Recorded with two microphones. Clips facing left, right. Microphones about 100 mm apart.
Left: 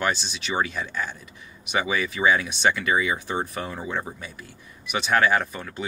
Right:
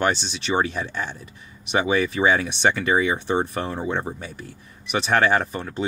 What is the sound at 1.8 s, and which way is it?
Speech, 30° right (ahead or behind).